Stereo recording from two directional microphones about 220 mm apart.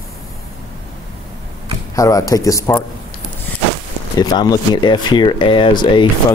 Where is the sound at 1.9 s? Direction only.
15° left (ahead or behind).